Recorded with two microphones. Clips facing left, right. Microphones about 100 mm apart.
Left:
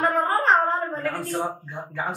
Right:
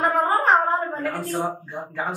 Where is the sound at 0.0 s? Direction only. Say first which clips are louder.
Right 2 dB; 15° right (ahead or behind).